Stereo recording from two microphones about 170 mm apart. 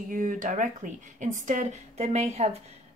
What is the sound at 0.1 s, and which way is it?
A woman's voice, 50° right (ahead or behind).